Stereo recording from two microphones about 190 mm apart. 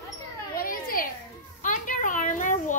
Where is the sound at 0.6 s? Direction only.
50° left (ahead or behind).